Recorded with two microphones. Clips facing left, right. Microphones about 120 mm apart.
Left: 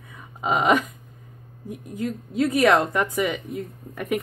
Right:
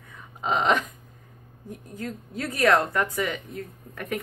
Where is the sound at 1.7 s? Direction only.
15° left (ahead or behind).